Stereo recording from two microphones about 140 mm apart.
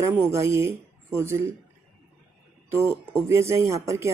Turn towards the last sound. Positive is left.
turn(degrees=-20)  # may be behind; listen again after turning